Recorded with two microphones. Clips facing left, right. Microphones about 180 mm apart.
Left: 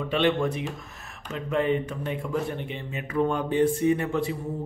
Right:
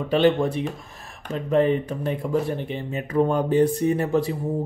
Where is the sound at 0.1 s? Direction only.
35° right (ahead or behind).